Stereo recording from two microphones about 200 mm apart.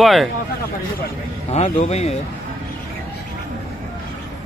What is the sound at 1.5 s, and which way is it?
Speech, 35° left (ahead or behind).